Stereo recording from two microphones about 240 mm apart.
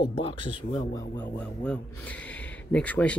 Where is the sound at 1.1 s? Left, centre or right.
Centre.